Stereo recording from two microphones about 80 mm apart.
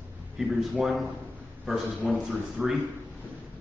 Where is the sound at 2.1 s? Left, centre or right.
Centre.